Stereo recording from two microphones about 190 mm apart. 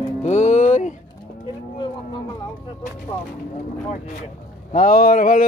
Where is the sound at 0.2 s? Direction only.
40° left (ahead or behind).